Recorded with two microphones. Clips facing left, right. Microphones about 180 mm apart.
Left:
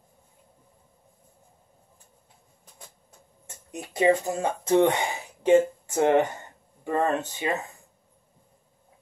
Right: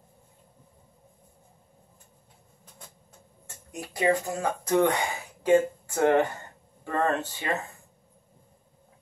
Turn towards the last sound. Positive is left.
turn(degrees=15)  # may be behind; listen again after turning